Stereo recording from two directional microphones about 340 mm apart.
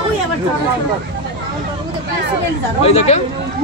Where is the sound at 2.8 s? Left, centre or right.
Centre.